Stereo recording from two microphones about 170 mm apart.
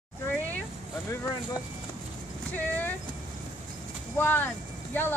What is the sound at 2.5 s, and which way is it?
Speech, 10° left (ahead or behind).